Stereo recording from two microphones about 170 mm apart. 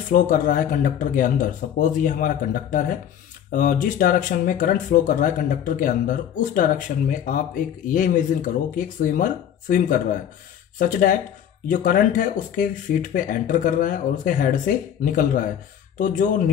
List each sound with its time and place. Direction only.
0.1 s speech: 50° left (ahead or behind)